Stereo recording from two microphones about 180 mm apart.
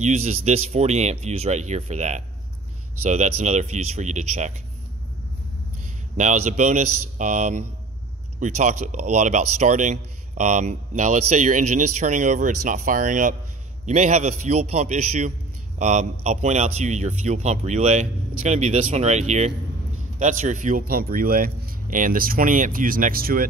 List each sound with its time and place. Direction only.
0.0 s a man's voice: 40° right (ahead or behind)
6.1 s a man's voice: 40° right (ahead or behind)